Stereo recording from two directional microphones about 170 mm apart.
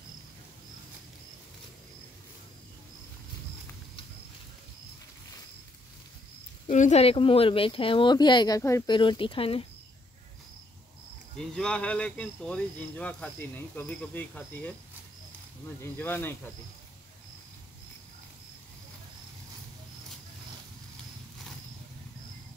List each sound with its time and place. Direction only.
6.7 s speech: 40° left (ahead or behind); by 8.9 s 20° left (ahead or behind)
8.9 s speech: 30° left (ahead or behind)
11.3 s speech: 5° left (ahead or behind)
15.8 s speech: 10° left (ahead or behind)